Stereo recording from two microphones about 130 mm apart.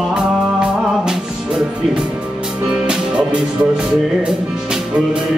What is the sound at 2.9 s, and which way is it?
Music, 5° right (ahead or behind).